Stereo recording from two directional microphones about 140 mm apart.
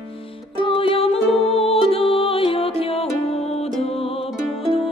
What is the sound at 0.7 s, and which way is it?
Music, 40° left (ahead or behind).